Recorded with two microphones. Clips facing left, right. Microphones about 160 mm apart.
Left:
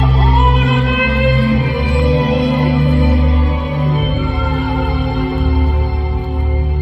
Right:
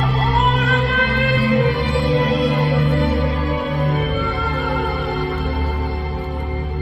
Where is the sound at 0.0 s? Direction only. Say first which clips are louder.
Left 3 dB; 20° left (ahead or behind).